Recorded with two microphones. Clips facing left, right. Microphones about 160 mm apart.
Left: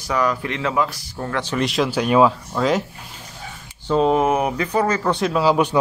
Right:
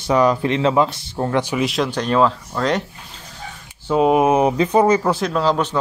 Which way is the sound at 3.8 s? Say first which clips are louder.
Right 2 dB; 10° right (ahead or behind).